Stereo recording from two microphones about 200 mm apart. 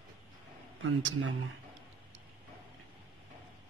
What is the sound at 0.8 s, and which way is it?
Speech, 70° right (ahead or behind).